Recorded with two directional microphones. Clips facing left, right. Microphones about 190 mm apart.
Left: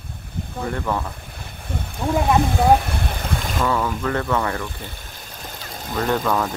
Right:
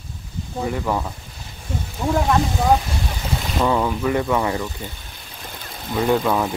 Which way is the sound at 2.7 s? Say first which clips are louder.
Even; 60° left (ahead or behind).